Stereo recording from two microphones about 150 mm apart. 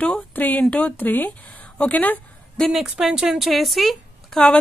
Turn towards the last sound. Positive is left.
turn(degrees=5)  # may be behind; listen again after turning